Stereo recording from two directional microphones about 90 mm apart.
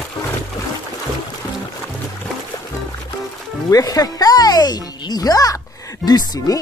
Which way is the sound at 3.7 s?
40° left (ahead or behind).